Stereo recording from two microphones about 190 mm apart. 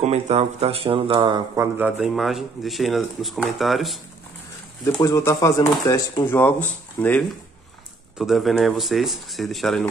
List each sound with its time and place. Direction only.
0.0 s speech: 35° right (ahead or behind); by 4.0 s centre (ahead or behind)
5.0 s speech: 15° left (ahead or behind); by 9.8 s centre (ahead or behind)